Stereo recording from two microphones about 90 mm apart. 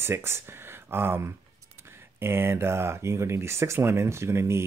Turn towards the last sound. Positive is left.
turn(degrees=-30)  # may be behind; listen again after turning